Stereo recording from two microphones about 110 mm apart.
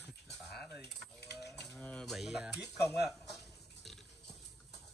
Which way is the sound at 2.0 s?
5° right (ahead or behind).